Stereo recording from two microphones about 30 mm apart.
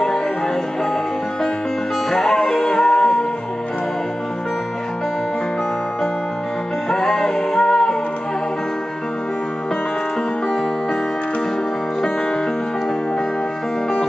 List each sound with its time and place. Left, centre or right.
2.0 s music: centre
6.9 s music: left